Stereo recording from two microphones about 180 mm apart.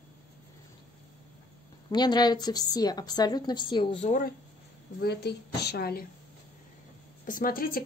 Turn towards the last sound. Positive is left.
turn(degrees=50)  # may be behind; listen again after turning